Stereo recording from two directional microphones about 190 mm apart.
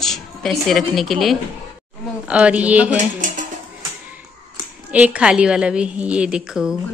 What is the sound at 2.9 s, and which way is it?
Speech, 45° right (ahead or behind).